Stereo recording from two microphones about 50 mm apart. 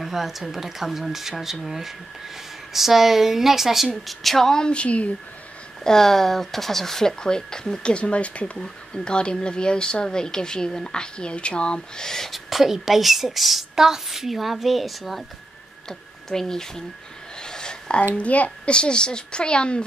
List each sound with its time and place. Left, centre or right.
0.0 s a woman's voice: centre; by 5.1 s left
5.9 s speech: centre
12.3 s a woman's voice: centre
17.4 s a sound: centre
18.1 s a child's voice: left